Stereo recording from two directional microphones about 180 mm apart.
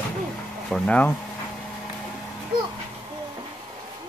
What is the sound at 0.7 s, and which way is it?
Speech, 5° left (ahead or behind).